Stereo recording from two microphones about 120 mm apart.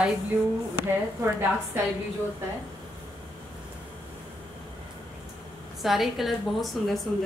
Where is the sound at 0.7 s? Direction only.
20° right (ahead or behind).